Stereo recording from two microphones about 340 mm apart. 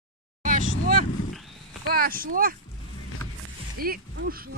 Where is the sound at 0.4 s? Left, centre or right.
Right.